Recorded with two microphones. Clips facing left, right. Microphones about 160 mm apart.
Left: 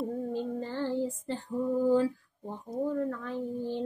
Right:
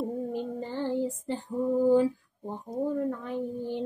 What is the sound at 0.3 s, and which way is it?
Child singing, 15° right (ahead or behind).